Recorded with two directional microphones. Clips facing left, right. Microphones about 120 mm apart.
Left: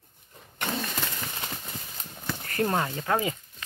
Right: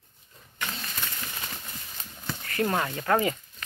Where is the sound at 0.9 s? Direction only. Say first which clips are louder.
Left 3 dB; 30° left (ahead or behind).